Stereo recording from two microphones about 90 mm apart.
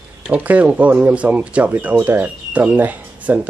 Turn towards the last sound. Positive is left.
turn(degrees=-15)  # may be behind; listen again after turning